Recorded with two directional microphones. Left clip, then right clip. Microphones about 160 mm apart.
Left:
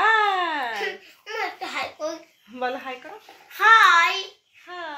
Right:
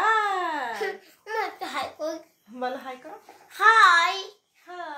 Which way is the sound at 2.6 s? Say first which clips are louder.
Left 3 dB; 35° left (ahead or behind).